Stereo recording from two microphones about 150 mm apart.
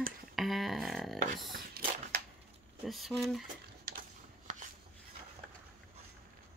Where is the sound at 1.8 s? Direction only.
90° right.